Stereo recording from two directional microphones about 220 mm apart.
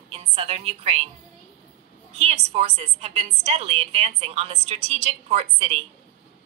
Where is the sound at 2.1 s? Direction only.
30° right (ahead or behind).